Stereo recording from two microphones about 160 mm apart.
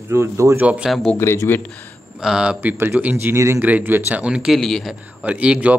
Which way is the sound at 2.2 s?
5° right (ahead or behind).